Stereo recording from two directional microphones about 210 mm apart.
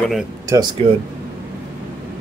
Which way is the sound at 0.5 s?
15° right (ahead or behind).